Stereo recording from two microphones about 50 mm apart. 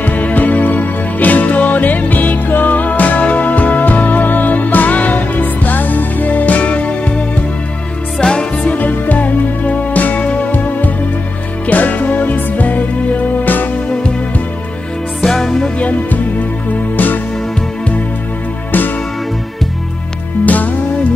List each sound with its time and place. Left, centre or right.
0.0 s music: left
8.2 s music: centre
8.7 s music: left
15.2 s music: centre
15.8 s music: left
20.4 s music: left